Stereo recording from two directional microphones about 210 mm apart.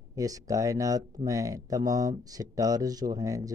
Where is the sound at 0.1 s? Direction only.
15° right (ahead or behind).